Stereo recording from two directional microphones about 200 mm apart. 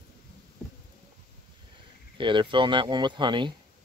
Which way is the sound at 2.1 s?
25° right (ahead or behind).